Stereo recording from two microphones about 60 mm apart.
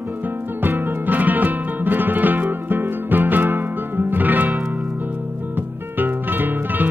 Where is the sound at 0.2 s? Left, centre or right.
Right.